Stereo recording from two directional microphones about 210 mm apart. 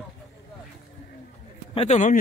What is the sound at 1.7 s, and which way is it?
Speech, 30° left (ahead or behind).